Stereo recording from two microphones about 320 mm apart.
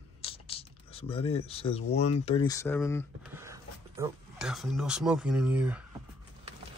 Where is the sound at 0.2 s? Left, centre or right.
Centre.